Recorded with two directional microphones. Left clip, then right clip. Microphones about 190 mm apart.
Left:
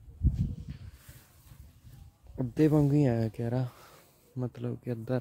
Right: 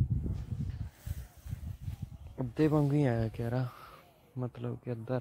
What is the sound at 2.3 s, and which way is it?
Speech, 35° left (ahead or behind).